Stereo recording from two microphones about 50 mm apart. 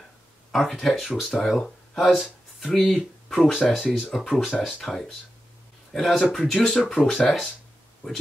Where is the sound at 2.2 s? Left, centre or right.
Centre.